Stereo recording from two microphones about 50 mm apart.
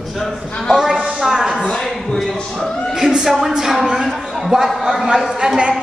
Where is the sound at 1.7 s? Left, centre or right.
Centre.